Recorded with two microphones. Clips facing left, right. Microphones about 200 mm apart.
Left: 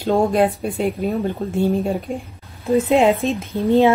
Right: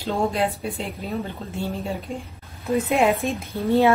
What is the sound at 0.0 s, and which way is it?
Speech, 50° left (ahead or behind).